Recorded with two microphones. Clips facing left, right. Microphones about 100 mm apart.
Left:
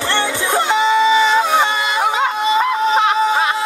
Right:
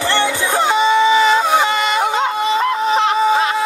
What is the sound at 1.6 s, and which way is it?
Music, 15° left (ahead or behind).